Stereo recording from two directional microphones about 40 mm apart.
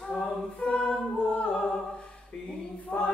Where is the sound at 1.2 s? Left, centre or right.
Left.